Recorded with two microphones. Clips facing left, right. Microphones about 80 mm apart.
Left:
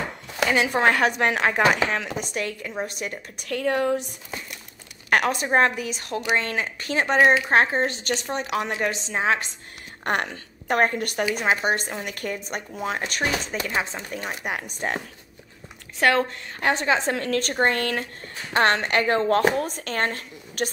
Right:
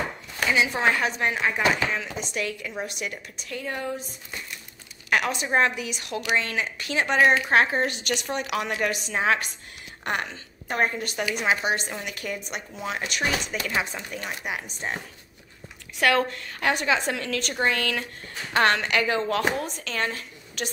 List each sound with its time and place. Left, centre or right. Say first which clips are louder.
0.5 s speech: left 2 dB; left
2.3 s a woman's voice: even; left
3.3 s speech: left 11 dB; left
5.1 s a woman's voice: left 3 dB; left
10.0 s speech: left 4 dB; left
11.3 s a woman's voice: even; left
14.4 s speech: left 3 dB; left
16.0 s a woman's voice: left 2 dB; left